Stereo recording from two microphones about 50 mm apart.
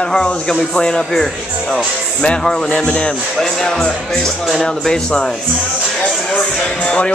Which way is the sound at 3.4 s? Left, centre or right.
Centre.